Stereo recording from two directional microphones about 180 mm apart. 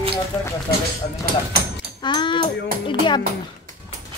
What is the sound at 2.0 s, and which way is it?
Speech, 25° left (ahead or behind).